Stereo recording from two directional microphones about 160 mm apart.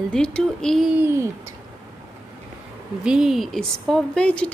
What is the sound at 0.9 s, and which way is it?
Speech, 15° right (ahead or behind).